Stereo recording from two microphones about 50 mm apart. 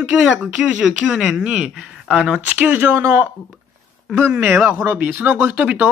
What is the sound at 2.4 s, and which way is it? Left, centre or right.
Speech, right.